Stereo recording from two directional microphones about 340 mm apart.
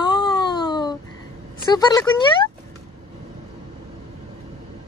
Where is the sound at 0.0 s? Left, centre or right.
Centre.